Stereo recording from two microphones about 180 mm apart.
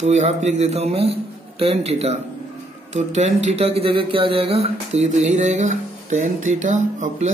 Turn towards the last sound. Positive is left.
turn(degrees=-40)  # may be behind; listen again after turning